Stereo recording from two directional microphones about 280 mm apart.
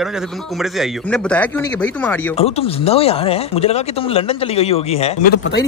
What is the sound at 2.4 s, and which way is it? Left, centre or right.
Speech, left.